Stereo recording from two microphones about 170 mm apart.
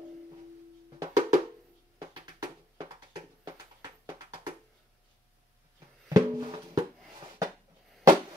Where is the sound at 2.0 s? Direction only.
25° right (ahead or behind).